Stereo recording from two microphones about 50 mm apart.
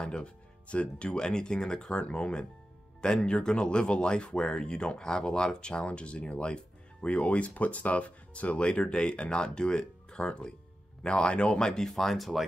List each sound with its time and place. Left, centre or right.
0.0 s speech: centre
11.9 s speech: centre